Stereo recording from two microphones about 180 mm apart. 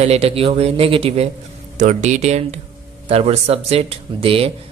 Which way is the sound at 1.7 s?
40° right (ahead or behind).